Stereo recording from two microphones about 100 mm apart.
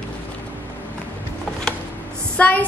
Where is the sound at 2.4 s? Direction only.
15° left (ahead or behind).